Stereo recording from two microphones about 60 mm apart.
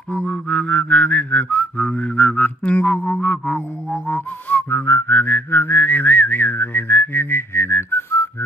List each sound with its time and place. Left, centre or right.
0.1 s whistling: centre; by 8.3 s left